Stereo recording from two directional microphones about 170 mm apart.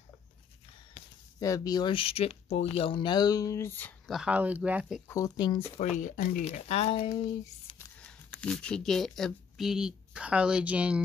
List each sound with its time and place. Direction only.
1.4 s speech: 20° left (ahead or behind)
4.1 s speech: 5° right (ahead or behind)
5.0 s speech: 20° left (ahead or behind)
5.8 s speech: 45° left (ahead or behind)
7.8 s speech: 10° left (ahead or behind); by 11.0 s 10° right (ahead or behind)